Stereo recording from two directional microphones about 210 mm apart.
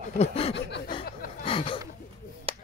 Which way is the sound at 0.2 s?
30° left (ahead or behind).